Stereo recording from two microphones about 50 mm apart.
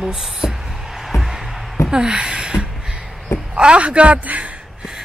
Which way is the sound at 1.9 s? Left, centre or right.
Centre.